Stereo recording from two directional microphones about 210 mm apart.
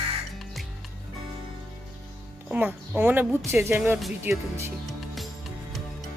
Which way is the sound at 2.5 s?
10° right (ahead or behind).